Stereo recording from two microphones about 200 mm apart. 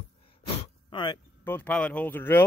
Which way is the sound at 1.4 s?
10° left (ahead or behind).